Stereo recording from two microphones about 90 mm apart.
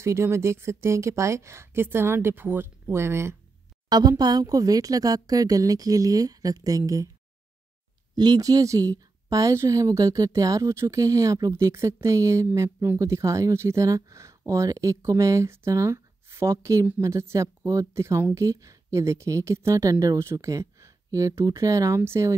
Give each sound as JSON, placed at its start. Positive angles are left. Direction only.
{"t": 0.0, "sound": "speech", "side_deg": -30}
{"t": 4.2, "sound": "a woman's voice", "side_deg": -45}
{"t": 8.1, "sound": "a woman's voice", "side_deg": -50}